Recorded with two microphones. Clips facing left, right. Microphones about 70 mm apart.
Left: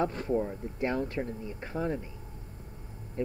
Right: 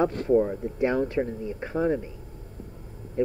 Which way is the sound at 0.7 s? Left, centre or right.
Centre.